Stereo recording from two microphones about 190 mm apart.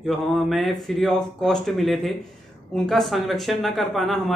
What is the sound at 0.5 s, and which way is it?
A man's voice, centre (ahead or behind).